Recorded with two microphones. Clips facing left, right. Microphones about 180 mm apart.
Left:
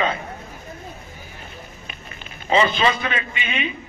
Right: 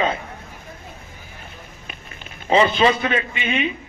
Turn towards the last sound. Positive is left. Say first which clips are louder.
# right 5 dB
turn(degrees=-50)  # may be behind; listen again after turning